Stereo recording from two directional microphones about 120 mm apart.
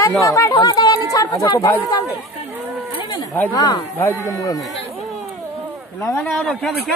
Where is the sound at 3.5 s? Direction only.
35° left (ahead or behind).